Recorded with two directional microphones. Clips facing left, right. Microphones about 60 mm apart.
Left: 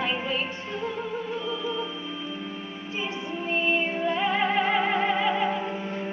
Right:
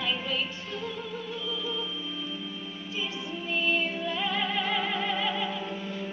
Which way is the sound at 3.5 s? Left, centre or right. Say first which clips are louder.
Left 3 dB; left.